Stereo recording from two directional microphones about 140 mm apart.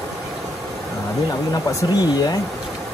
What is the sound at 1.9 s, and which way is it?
Speech, 30° left (ahead or behind).